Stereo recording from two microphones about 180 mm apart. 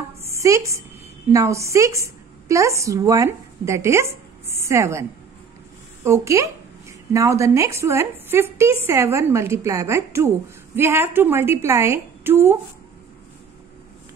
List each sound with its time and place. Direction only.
0.2 s a sound: 15° right (ahead or behind)
1.3 s a woman's voice: 15° right (ahead or behind)
6.0 s speech: 15° right (ahead or behind)